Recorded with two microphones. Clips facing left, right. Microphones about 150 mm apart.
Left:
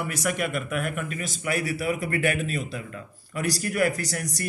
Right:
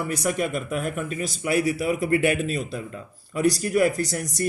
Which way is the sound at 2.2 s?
45° left (ahead or behind).